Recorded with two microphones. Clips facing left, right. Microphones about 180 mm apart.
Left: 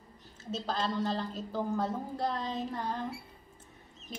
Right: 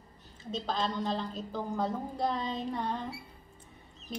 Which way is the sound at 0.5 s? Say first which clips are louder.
Even; 5° left (ahead or behind).